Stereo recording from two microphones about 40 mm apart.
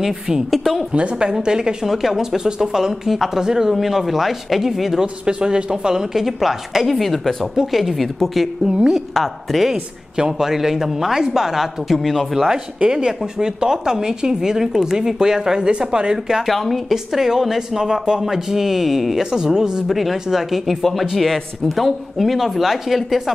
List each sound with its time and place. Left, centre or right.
0.5 s speech: centre
0.9 s speech: right; by 5.0 s centre
5.0 s speech: right
6.1 s speech: centre
6.9 s speech: centre
8.6 s speech: right
9.1 s speech: centre
9.7 s speech: centre
12.8 s speech: centre
16.4 s speech: centre
19.3 s speech: centre
19.9 s speech: centre